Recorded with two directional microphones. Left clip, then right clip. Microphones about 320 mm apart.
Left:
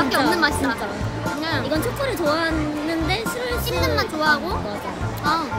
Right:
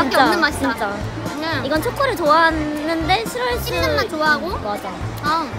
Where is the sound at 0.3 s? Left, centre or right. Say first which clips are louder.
Right 2 dB; centre.